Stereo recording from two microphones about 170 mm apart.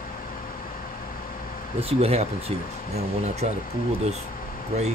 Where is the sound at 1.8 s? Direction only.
35° right (ahead or behind).